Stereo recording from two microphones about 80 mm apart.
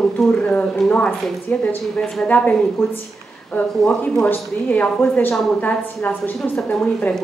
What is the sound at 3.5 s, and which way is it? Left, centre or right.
A woman's voice, centre.